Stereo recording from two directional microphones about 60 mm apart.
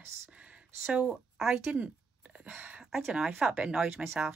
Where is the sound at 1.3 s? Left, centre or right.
Centre.